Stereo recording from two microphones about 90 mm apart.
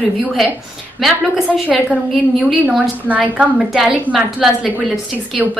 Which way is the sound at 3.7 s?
Centre (ahead or behind).